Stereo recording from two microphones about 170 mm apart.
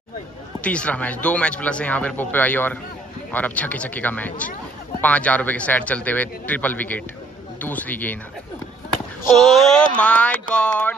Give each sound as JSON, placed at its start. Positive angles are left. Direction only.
{"t": 0.7, "sound": "speech", "side_deg": 10}
{"t": 9.3, "sound": "speech", "side_deg": 0}